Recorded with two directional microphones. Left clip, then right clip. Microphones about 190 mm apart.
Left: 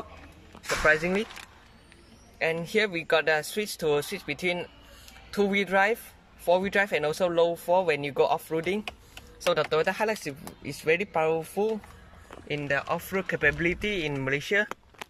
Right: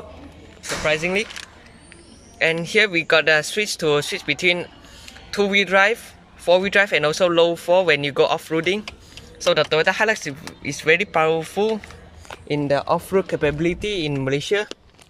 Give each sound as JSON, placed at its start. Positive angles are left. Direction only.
{"t": 0.8, "sound": "speech", "side_deg": 0}
{"t": 2.3, "sound": "speech", "side_deg": 0}
{"t": 12.4, "sound": "speech", "side_deg": -25}